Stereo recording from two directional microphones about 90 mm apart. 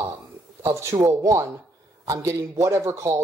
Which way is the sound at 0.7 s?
30° right (ahead or behind).